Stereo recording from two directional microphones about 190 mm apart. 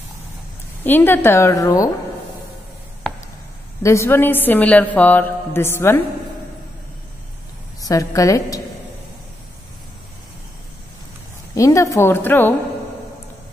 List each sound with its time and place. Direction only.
0.8 s a woman's voice: 10° left (ahead or behind)
3.8 s a woman's voice: 15° left (ahead or behind)
7.8 s a woman's voice: 15° left (ahead or behind)
11.5 s a woman's voice: 15° left (ahead or behind)